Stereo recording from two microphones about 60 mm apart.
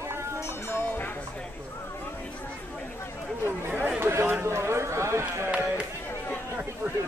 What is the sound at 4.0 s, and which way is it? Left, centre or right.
A man's voice, right.